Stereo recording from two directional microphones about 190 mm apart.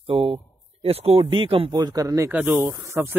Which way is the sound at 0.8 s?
30° right (ahead or behind).